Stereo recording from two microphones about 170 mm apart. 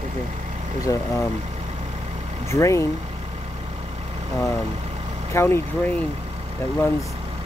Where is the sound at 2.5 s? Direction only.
15° left (ahead or behind).